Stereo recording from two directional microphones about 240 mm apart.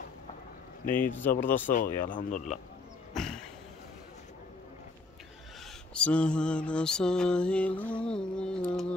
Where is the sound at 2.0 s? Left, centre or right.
Left.